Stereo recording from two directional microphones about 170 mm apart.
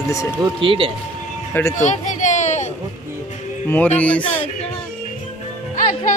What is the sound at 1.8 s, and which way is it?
Children playing, 45° left (ahead or behind).